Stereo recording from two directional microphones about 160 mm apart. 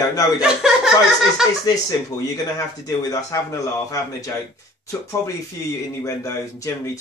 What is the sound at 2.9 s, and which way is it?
Speech, 20° left (ahead or behind).